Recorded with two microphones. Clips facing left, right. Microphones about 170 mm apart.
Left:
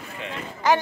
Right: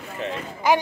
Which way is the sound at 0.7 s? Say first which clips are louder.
Right 1 dB; 10° right (ahead or behind).